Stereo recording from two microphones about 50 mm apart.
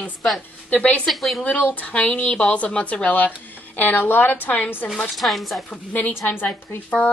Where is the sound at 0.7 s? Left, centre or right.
Left.